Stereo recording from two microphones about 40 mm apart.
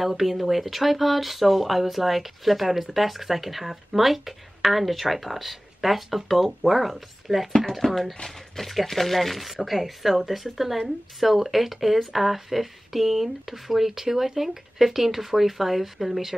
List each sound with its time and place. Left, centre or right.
0.0 s speech: centre